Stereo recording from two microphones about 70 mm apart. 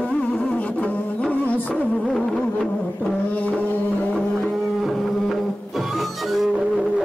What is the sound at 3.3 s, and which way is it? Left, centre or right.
Music, left.